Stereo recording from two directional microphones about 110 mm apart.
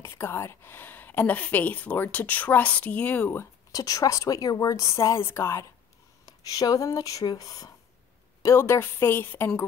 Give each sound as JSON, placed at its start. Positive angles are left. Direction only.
{"t": 0.0, "sound": "a woman's voice", "side_deg": 20}
{"t": 3.7, "sound": "a woman's voice", "side_deg": 35}